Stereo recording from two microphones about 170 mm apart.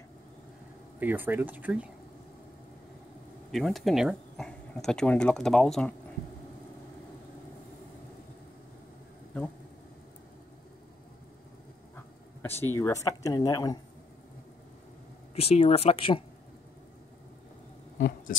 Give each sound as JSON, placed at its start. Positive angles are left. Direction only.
{"t": 0.9, "sound": "speech", "side_deg": -10}
{"t": 3.5, "sound": "speech", "side_deg": 0}
{"t": 11.9, "sound": "speech", "side_deg": 15}
{"t": 15.3, "sound": "speech", "side_deg": 35}
{"t": 17.9, "sound": "a sound", "side_deg": 55}